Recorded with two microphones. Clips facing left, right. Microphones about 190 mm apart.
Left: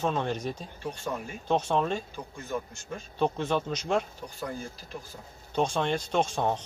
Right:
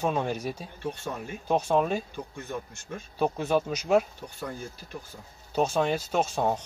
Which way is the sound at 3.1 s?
10° right (ahead or behind).